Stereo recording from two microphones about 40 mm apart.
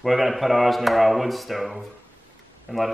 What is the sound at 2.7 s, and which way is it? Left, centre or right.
Speech, right.